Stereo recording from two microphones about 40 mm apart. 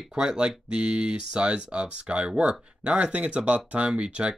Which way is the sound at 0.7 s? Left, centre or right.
Right.